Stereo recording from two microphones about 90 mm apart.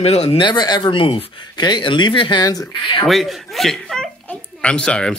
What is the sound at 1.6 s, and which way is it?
Speech, 60° left (ahead or behind).